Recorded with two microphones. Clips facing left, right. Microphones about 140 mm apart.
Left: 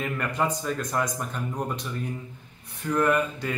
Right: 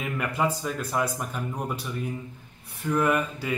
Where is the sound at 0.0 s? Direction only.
5° right (ahead or behind).